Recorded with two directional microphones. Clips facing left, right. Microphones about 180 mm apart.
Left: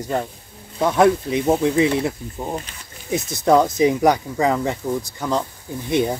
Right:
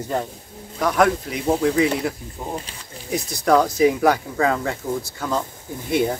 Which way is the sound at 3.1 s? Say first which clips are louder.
Left 2 dB; 20° left (ahead or behind).